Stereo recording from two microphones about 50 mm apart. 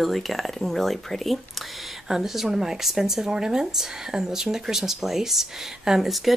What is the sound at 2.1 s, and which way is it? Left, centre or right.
Speech, centre.